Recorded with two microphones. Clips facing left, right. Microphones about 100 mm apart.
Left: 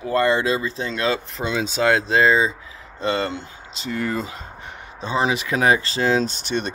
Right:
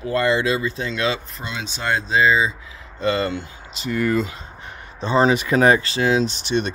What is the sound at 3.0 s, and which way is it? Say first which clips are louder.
Speech: right 2 dB; 25° left (ahead or behind).